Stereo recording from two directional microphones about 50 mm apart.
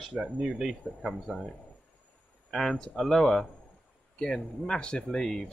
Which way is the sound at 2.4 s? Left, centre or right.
Centre.